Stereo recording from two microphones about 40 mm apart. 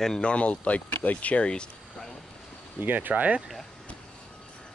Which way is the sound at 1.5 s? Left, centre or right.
Left.